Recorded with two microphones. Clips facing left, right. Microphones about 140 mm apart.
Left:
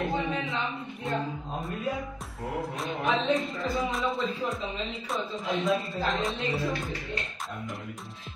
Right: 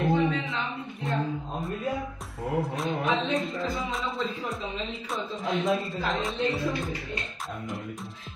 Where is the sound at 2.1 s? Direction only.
Centre (ahead or behind).